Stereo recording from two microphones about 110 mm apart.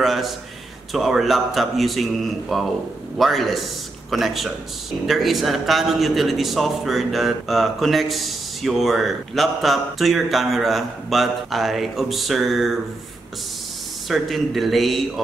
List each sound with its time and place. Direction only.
0.0 s a man's voice: centre (ahead or behind)
14.0 s a man's voice: centre (ahead or behind)